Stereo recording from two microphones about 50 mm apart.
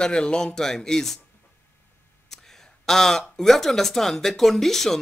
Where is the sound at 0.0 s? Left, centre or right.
Centre.